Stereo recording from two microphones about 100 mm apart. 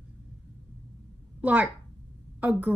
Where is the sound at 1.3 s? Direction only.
15° right (ahead or behind).